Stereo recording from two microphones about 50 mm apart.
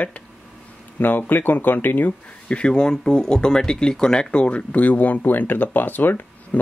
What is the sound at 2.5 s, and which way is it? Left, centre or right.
Speech, centre.